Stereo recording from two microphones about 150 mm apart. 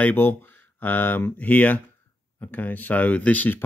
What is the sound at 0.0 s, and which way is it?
Speech, 15° left (ahead or behind).